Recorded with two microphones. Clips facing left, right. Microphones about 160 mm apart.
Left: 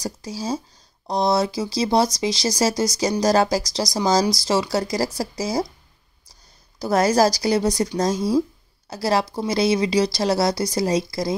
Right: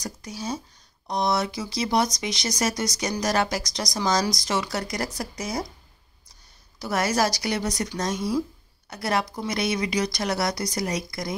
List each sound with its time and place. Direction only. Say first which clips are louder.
0.0 s speech: left 5 dB; 30° left (ahead or behind)
6.8 s speech: left 7 dB; 35° left (ahead or behind)